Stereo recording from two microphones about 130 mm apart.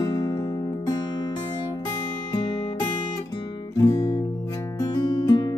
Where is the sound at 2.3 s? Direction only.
35° left (ahead or behind).